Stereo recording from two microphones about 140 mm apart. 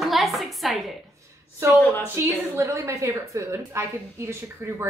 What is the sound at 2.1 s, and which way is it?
A woman's voice, 20° right (ahead or behind).